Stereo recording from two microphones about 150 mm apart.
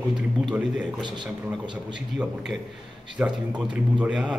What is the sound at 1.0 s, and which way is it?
Speech, 30° right (ahead or behind).